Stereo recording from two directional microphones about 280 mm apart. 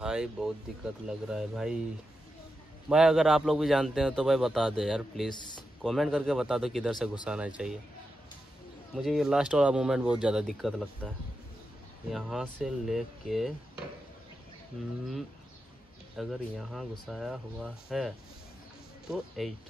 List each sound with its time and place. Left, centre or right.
0.0 s a man's voice: centre
2.9 s a man's voice: centre
5.3 s speech: centre
5.8 s a man's voice: centre
8.9 s a man's voice: centre
12.1 s a man's voice: centre
16.2 s a man's voice: centre